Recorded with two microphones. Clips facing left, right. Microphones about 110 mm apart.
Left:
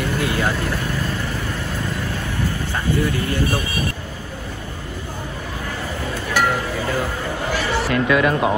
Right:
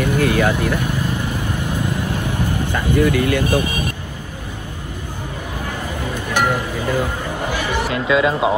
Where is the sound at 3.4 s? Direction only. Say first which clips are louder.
Right 5 dB; 20° right (ahead or behind).